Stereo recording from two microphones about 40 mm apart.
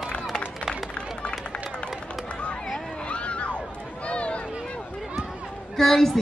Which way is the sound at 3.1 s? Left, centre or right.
Left.